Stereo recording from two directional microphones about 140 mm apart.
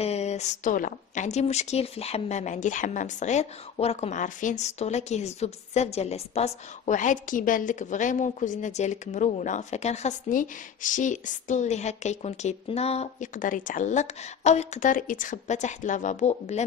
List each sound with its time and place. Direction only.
0.0 s a woman's voice: 50° left (ahead or behind)
13.3 s a woman's voice: 70° left (ahead or behind); by 16.6 s 55° left (ahead or behind)